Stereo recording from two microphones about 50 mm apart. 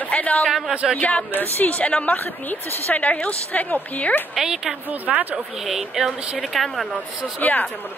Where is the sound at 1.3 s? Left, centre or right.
Left.